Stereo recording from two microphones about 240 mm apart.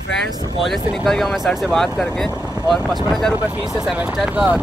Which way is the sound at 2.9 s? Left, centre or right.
Centre.